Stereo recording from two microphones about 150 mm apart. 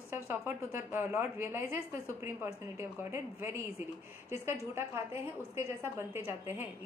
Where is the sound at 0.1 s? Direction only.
15° right (ahead or behind).